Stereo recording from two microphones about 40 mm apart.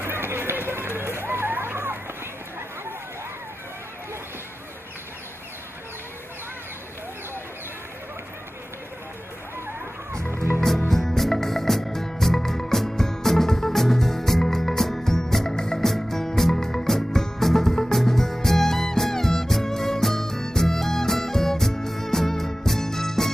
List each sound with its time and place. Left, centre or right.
0.0 s run: right
10.9 s music: centre